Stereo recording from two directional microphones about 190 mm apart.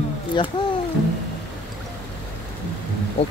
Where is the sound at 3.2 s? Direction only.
35° left (ahead or behind).